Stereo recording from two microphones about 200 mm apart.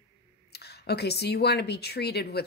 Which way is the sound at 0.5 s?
55° left (ahead or behind).